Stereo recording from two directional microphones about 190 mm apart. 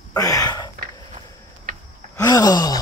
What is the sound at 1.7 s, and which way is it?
Wheeze, 50° right (ahead or behind).